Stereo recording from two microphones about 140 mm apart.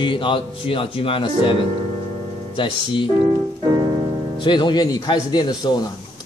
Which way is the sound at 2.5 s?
35° left (ahead or behind).